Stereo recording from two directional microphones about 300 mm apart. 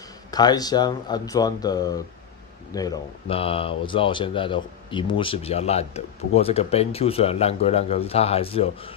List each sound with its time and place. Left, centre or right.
0.3 s speech: centre